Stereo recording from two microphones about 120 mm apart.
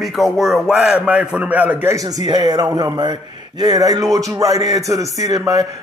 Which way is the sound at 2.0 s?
30° right (ahead or behind).